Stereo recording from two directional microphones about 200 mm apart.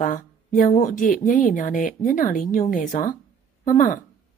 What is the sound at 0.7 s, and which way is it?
A woman's voice, 40° left (ahead or behind).